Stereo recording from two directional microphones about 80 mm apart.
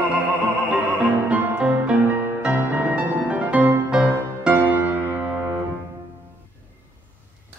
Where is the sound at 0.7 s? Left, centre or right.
Centre.